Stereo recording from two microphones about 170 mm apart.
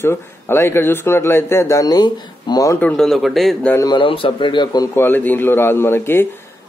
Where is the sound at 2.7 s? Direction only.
5° left (ahead or behind).